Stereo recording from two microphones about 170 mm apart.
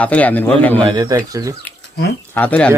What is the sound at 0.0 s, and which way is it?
Speech, 10° left (ahead or behind).